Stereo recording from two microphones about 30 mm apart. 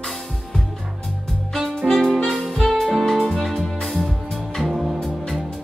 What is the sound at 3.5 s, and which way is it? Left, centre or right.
Music, centre.